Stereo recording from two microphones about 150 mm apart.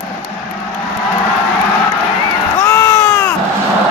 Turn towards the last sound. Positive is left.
turn(degrees=15)  # may be behind; listen again after turning